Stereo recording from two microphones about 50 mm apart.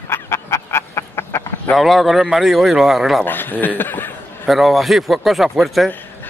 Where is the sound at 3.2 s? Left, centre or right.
Left.